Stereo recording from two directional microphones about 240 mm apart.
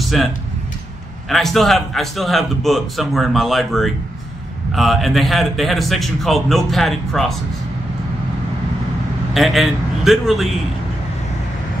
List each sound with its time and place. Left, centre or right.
0.1 s a man's voice: centre
1.3 s a man's voice: centre
9.3 s a man's voice: centre